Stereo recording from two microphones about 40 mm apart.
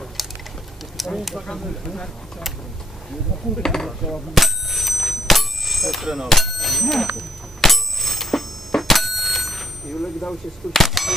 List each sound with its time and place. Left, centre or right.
0.2 s patter: centre
0.9 s speech: centre
1.7 s speech: centre
3.5 s speech: centre
3.8 s bicycle bell: centre
6.2 s speech: centre
7.2 s bicycle bell: centre
10.7 s speech: centre